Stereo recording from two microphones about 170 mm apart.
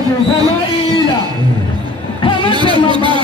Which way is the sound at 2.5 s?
25° right (ahead or behind).